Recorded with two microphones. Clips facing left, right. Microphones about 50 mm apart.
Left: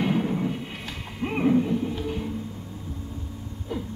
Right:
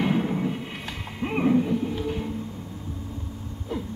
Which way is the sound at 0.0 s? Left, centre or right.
Centre.